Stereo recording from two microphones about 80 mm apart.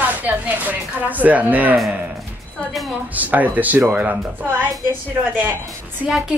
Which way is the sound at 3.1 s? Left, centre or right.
Right.